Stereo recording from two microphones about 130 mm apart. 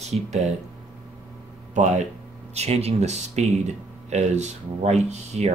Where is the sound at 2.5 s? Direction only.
55° right (ahead or behind).